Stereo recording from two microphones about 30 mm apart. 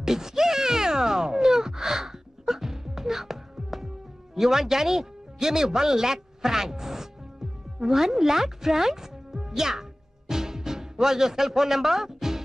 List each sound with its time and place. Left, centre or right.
0.0 s a sound: centre
4.4 s speech: centre
9.6 s music: centre